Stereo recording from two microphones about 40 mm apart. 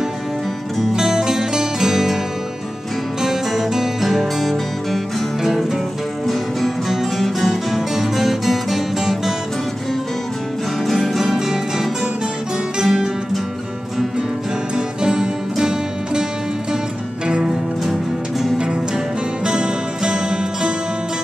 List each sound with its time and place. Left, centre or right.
0.9 s music: centre
3.2 s music: centre
4.2 s music: centre
6.9 s music: centre
10.9 s music: centre
15.0 s music: centre
19.4 s music: right